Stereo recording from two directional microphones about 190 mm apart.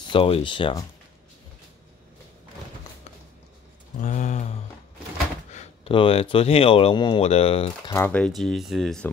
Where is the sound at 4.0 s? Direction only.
40° left (ahead or behind).